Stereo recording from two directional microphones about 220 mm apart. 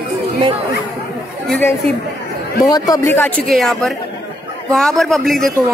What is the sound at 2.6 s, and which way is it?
Speech, 15° left (ahead or behind).